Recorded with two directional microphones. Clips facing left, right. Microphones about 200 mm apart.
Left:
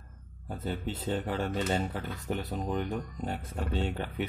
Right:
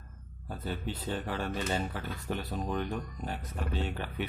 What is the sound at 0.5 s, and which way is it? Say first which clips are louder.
Speech: left 2 dB; 20° left (ahead or behind).